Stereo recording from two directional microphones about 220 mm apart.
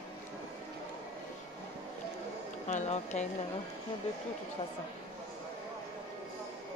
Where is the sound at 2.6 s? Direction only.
30° left (ahead or behind).